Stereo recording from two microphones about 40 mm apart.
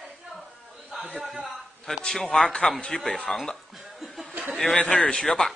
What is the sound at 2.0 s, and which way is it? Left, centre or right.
A man's voice, centre.